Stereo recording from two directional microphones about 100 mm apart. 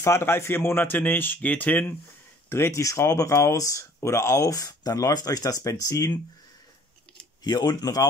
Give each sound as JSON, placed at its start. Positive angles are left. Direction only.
{"t": 0.0, "sound": "speech", "side_deg": 25}
{"t": 7.4, "sound": "speech", "side_deg": 45}